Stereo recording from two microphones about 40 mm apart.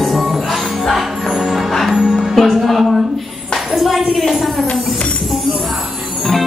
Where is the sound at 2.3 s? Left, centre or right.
Centre.